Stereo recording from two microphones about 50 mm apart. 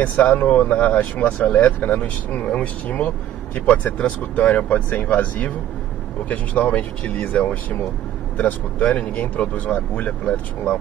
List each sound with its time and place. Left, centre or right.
0.0 s speech: left